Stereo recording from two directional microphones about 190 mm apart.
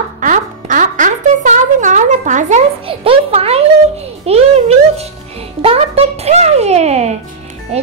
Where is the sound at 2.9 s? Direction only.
30° right (ahead or behind).